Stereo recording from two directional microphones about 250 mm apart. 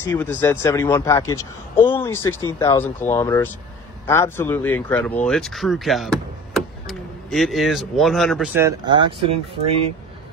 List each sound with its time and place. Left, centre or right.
0.0 s speech: centre
8.5 s speech: centre